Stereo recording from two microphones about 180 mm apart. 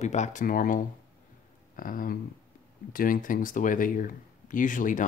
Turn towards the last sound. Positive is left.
turn(degrees=45)  # may be behind; listen again after turning